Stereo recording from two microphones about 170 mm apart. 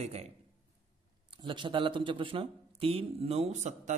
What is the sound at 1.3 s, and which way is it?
Speech, 30° right (ahead or behind).